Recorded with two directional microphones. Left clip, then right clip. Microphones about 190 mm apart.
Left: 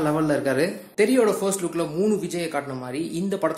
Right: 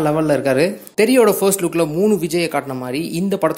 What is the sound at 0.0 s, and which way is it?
Speech, 35° right (ahead or behind).